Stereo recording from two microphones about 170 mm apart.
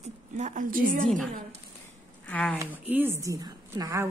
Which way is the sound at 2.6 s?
10° right (ahead or behind).